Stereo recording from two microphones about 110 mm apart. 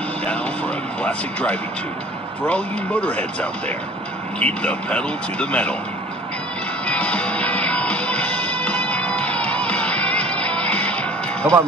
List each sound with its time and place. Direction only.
0.2 s speech: 10° left (ahead or behind)
6.9 s music: 10° left (ahead or behind)